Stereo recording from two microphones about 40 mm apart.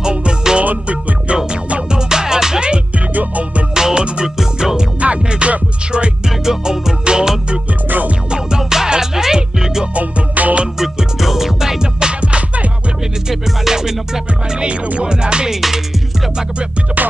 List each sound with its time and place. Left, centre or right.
0.0 s music: right
3.2 s music: right
3.7 s music: centre
5.0 s music: right
6.2 s music: centre
9.9 s music: right
10.8 s music: centre
11.8 s music: right
13.3 s music: centre
15.0 s music: right
15.5 s music: centre